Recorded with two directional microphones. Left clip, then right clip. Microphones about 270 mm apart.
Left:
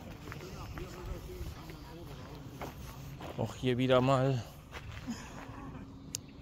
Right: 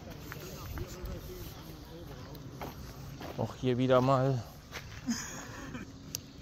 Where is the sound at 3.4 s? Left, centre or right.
Centre.